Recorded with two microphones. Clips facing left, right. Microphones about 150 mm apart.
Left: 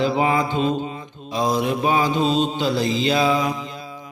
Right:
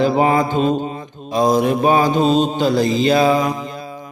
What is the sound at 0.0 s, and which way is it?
Mantra, 45° right (ahead or behind).